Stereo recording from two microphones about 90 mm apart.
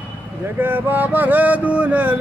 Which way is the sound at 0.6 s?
20° right (ahead or behind).